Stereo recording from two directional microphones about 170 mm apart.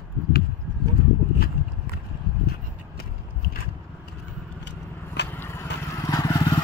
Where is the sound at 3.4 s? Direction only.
60° left (ahead or behind).